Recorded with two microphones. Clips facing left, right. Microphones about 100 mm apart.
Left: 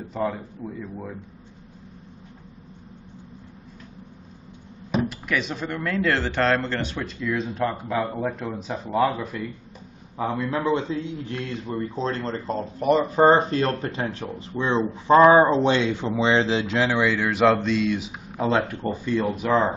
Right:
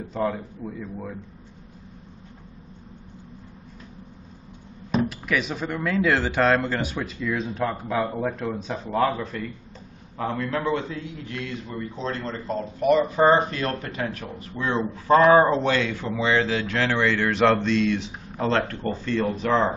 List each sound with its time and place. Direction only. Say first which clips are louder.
0.1 s a man's voice: right 1 dB; centre (ahead or behind)
4.9 s a man's voice: right 1 dB; centre (ahead or behind)